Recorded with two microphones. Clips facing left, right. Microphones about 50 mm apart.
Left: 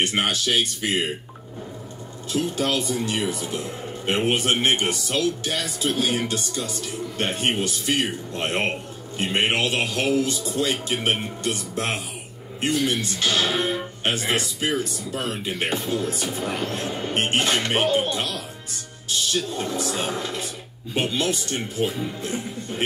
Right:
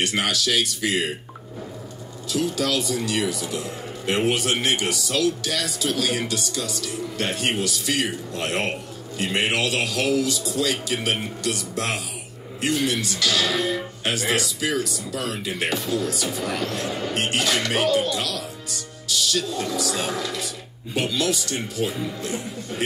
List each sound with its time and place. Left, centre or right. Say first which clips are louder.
0.0 s a man's voice: even; left
2.5 s a man's voice: even; left
7.7 s speech: left 1 dB; right
8.4 s a man's voice: left 1 dB; left